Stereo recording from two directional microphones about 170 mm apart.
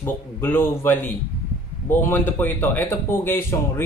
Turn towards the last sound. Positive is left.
turn(degrees=15)  # may be behind; listen again after turning